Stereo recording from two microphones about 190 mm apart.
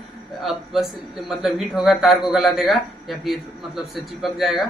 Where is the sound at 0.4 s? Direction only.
Centre (ahead or behind).